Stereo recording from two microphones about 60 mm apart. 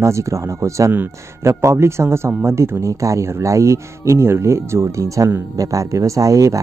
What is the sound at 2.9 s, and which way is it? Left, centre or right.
Speech, right.